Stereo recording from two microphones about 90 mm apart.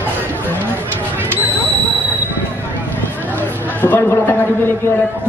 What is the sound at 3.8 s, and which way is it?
Speech, 20° left (ahead or behind).